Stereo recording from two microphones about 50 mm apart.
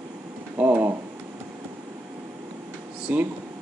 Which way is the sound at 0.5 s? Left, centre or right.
Right.